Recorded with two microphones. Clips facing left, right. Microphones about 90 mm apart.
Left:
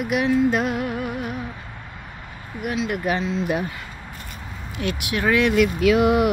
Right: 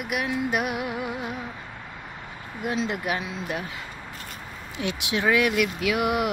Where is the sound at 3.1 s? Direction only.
10° right (ahead or behind).